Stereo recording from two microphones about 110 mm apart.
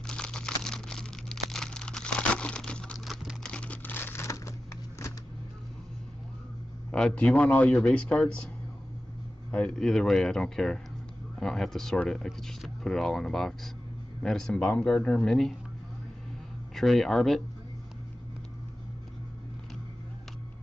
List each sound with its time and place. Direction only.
0.0 s crumpling: 10° left (ahead or behind); by 5.1 s 25° left (ahead or behind)
6.9 s speech: 10° left (ahead or behind)
9.5 s speech: 10° left (ahead or behind)
16.7 s speech: centre (ahead or behind)